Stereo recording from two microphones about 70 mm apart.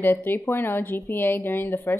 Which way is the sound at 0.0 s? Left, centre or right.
Left.